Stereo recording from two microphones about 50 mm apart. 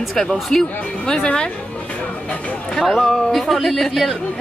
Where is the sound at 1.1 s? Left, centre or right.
Centre.